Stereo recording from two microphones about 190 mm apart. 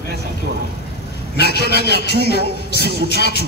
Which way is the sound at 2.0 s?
55° right (ahead or behind).